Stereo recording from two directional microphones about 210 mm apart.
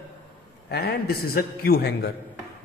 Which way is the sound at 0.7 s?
45° left (ahead or behind).